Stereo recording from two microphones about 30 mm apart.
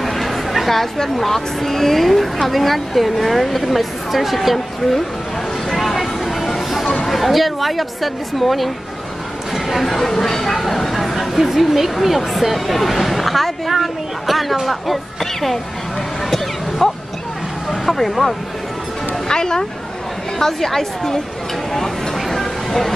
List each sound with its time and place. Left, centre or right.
0.0 s chatter: centre
1.1 s a woman's voice: centre
5.7 s a sound: centre
7.1 s a woman's voice: centre
9.8 s speech: centre
16.3 s vehicle: centre
17.6 s speech: centre
19.2 s speech: left
20.3 s speech: centre
21.7 s a sound: centre